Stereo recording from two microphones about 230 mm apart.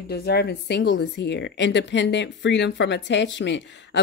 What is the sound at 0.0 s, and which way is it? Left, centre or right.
A woman's voice, left.